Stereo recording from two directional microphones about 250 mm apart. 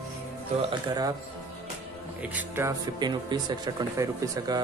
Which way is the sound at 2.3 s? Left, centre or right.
Centre.